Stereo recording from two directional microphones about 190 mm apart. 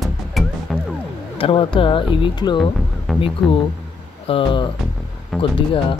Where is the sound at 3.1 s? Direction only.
Centre (ahead or behind).